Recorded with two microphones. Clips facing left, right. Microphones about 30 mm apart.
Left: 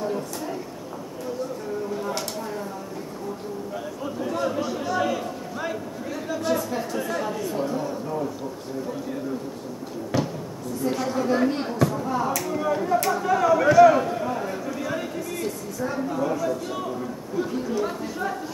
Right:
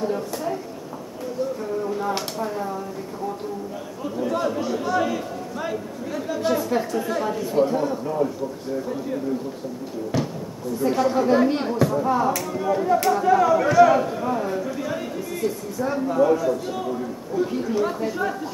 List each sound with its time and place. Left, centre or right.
0.0 s a sound: centre
4.5 s a sound: centre
6.9 s speech: centre
7.5 s a man's voice: right
10.1 s speech: centre
10.8 s a man's voice: centre
11.6 s speech: centre
12.0 s a man's voice: centre
12.5 s speech: centre
16.1 s a man's voice: centre
17.5 s a man's voice: centre